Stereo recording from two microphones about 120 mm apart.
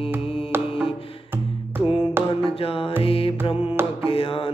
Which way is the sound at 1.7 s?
15° right (ahead or behind).